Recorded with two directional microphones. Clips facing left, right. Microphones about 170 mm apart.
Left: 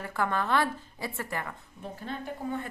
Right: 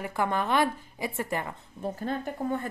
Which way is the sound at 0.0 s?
15° right (ahead or behind).